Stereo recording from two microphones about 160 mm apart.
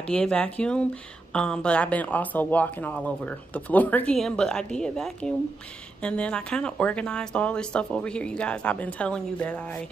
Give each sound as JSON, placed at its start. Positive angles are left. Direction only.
{"t": 0.0, "sound": "speech", "side_deg": 5}